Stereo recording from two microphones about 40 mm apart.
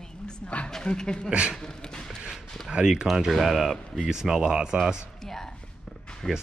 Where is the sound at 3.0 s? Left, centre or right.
Centre.